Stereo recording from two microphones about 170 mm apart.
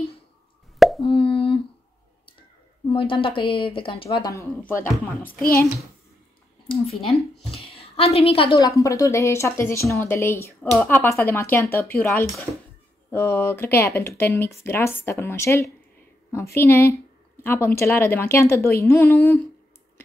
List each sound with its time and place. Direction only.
0.7 s plop: centre (ahead or behind)
1.0 s plop: 30° left (ahead or behind)
2.9 s speech: 30° left (ahead or behind)
4.3 s speech: 15° left (ahead or behind)
5.2 s a child's voice: 60° left (ahead or behind)
7.2 s a woman's voice: 35° left (ahead or behind)
8.5 s speech: 20° left (ahead or behind)